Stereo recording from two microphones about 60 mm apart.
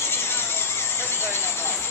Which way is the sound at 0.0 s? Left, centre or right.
Left.